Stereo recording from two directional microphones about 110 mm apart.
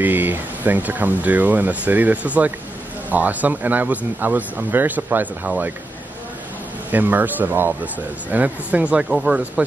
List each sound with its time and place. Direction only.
0.0 s speech: 15° right (ahead or behind)
6.9 s speech: 15° right (ahead or behind)